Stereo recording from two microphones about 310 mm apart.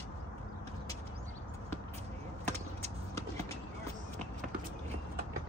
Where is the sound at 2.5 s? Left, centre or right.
Right.